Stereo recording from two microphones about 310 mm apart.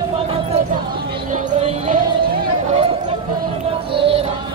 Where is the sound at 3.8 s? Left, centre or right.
Centre.